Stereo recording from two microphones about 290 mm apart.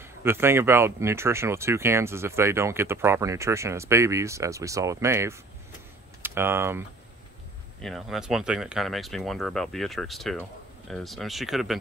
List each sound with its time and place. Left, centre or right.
0.0 s speech: centre
7.8 s speech: centre